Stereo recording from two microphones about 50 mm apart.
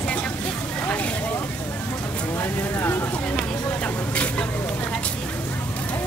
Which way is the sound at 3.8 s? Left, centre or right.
Left.